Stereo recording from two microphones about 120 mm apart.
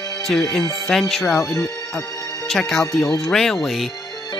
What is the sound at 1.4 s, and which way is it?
Speech, 25° left (ahead or behind).